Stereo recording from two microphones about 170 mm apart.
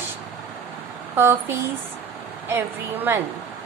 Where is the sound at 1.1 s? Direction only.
15° right (ahead or behind).